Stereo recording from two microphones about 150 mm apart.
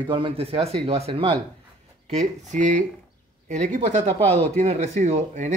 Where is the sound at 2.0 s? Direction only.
55° right (ahead or behind).